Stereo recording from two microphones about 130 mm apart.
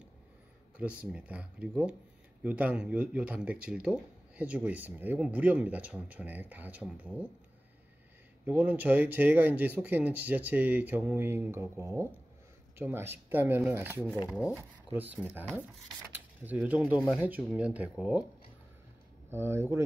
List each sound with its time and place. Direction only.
0.7 s speech: 10° right (ahead or behind)
8.5 s speech: 15° right (ahead or behind)
19.3 s speech: 20° right (ahead or behind)